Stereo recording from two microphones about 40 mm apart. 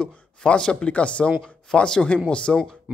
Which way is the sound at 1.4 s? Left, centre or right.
Centre.